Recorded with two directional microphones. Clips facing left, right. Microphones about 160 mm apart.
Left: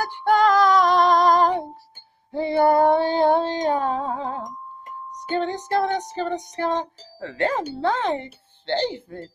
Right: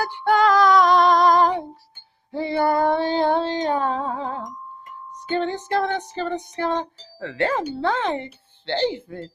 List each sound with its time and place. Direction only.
0.0 s music: 45° left (ahead or behind)
2.3 s female singing: 45° left (ahead or behind)
3.7 s music: 45° left (ahead or behind)
6.5 s speech: 40° left (ahead or behind)